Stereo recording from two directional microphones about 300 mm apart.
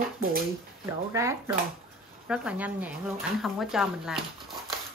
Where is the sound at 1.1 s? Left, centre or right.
Centre.